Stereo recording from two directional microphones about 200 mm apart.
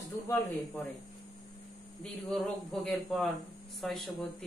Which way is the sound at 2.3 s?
Centre (ahead or behind).